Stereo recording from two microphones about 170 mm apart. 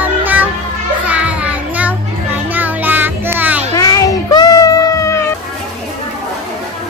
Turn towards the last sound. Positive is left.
turn(degrees=20)  # may be behind; listen again after turning